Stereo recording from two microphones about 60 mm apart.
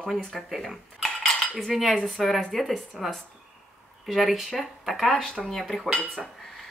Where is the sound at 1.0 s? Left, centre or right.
Centre.